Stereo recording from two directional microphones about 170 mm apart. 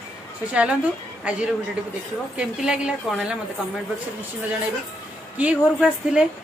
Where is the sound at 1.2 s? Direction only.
5° right (ahead or behind).